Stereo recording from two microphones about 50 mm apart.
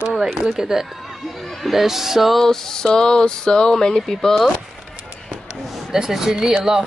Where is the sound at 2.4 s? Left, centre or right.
Centre.